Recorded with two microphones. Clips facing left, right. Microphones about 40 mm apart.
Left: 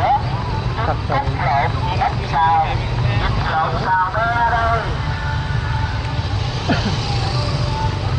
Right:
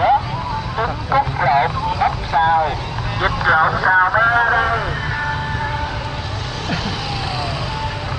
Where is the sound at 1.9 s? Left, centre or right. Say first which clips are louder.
Right 1 dB; centre.